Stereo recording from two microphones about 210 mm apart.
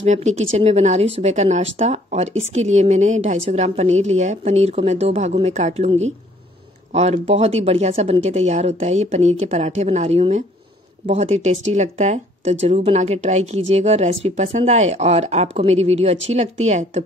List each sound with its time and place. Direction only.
0.0 s speech: 35° right (ahead or behind)